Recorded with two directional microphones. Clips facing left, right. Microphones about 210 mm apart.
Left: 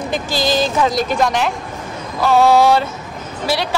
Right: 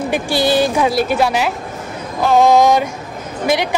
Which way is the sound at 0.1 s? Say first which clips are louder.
Right 3 dB; 10° right (ahead or behind).